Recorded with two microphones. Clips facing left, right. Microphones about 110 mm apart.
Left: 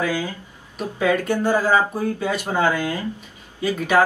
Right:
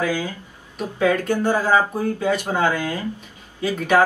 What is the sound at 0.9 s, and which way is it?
Speech, 10° left (ahead or behind).